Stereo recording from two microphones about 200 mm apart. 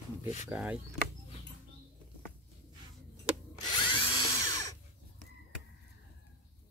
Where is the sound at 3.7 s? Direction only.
25° left (ahead or behind).